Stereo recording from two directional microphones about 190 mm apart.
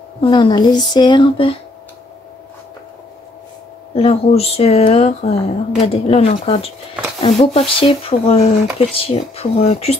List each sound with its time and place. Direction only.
0.2 s speech: 25° left (ahead or behind)
3.9 s speech: 30° left (ahead or behind)